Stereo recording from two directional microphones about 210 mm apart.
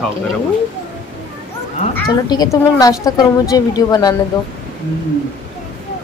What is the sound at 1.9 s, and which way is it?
Speech, 15° left (ahead or behind).